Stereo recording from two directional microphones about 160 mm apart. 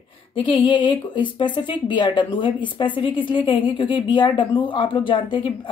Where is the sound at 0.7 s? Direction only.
30° left (ahead or behind).